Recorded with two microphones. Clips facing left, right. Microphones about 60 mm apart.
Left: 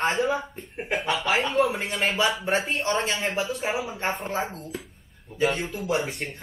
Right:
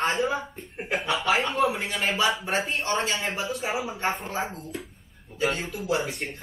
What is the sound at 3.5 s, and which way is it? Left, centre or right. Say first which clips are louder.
Speech: left 1 dB; centre.